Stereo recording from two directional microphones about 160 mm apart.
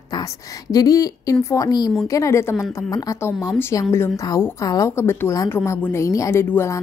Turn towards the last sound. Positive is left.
turn(degrees=15)  # may be behind; listen again after turning